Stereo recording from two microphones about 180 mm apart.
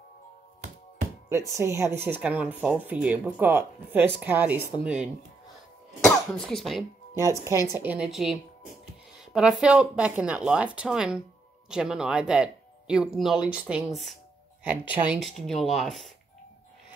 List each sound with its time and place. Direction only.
1.3 s speech: 15° right (ahead or behind)
5.9 s cough: 5° left (ahead or behind)
7.2 s speech: 15° right (ahead or behind); by 16.1 s centre (ahead or behind)